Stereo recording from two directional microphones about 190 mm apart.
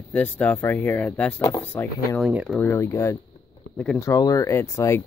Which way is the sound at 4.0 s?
15° left (ahead or behind).